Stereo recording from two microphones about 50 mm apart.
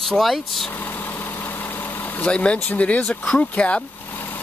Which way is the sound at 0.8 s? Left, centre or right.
Left.